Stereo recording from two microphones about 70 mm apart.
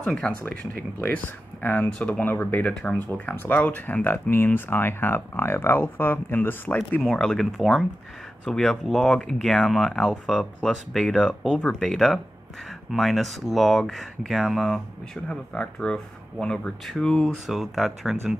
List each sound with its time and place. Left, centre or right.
0.5 s speech: left
7.0 s speech: centre
15.2 s speech: centre
17.5 s speech: centre